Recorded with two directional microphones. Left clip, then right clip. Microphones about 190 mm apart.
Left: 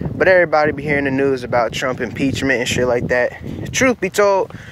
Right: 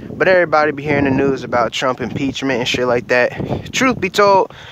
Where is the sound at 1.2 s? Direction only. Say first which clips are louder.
Even; 10° right (ahead or behind); by 3.4 s 35° right (ahead or behind).